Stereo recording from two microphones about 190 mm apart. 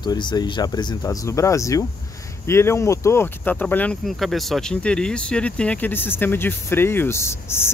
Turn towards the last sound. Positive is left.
turn(degrees=15)  # may be behind; listen again after turning